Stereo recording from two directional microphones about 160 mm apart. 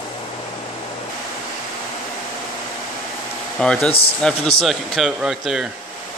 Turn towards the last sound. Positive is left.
turn(degrees=-5)  # may be behind; listen again after turning